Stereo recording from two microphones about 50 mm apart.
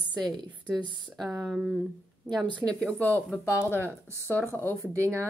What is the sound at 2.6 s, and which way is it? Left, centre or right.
Speech, right.